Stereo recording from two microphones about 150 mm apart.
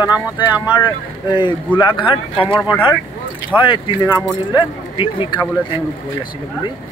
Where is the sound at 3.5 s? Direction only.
35° left (ahead or behind).